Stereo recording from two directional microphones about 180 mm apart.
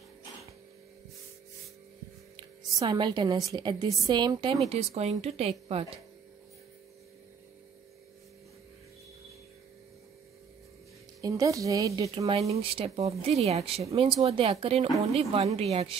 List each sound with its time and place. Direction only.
2.3 s a sound: 25° right (ahead or behind)
3.5 s a woman's voice: 25° right (ahead or behind)
11.1 s a woman's voice: 20° right (ahead or behind)
12.3 s speech: 35° right (ahead or behind)